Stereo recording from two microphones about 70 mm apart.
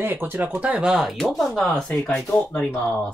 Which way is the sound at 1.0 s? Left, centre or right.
Centre.